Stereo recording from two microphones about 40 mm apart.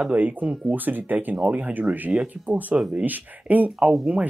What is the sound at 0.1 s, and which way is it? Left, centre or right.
Speech, right.